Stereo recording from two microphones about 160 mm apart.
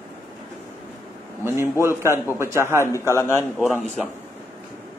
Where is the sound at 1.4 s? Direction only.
15° right (ahead or behind).